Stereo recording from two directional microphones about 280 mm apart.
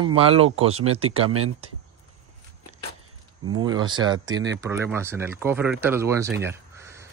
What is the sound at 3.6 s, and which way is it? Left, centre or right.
Speech, centre.